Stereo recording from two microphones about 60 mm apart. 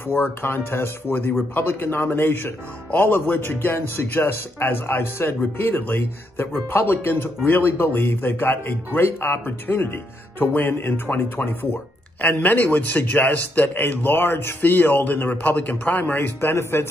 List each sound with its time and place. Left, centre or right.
0.0 s a man's voice: left